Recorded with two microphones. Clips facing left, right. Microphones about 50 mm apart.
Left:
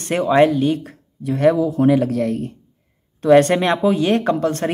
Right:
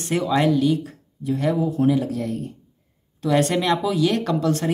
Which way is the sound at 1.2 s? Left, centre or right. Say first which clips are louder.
Left 7 dB; left.